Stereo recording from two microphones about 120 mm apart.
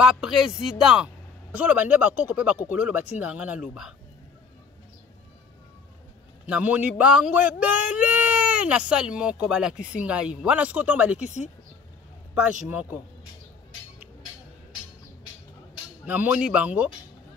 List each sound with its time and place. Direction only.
0.0 s speech: 5° right (ahead or behind)
6.4 s speech: 10° right (ahead or behind)
11.2 s speech: 75° left (ahead or behind)
12.4 s speech: 10° right (ahead or behind)
16.1 s speech: 10° right (ahead or behind)